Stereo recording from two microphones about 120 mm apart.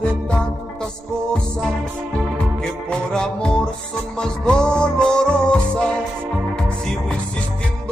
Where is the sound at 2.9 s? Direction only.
5° left (ahead or behind).